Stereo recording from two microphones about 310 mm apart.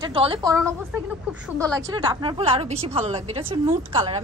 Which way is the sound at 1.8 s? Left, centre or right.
Centre.